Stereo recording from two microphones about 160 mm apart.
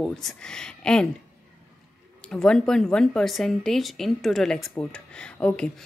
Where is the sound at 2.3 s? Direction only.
5° left (ahead or behind).